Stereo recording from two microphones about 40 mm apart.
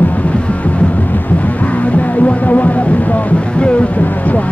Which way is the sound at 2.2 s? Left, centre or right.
Left.